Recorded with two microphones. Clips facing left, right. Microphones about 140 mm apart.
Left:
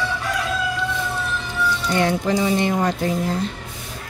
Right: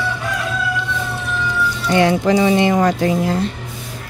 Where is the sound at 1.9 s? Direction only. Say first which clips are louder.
Right 7 dB; 90° right.